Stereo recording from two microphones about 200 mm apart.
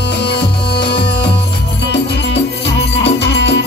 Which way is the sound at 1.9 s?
60° left (ahead or behind).